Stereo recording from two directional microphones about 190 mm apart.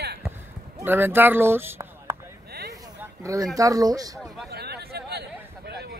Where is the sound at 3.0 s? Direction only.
15° right (ahead or behind).